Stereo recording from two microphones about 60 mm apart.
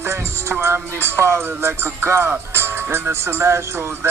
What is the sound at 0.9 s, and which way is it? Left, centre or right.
Speech, right.